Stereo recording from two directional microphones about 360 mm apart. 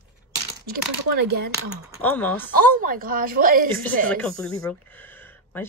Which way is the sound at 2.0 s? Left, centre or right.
Centre.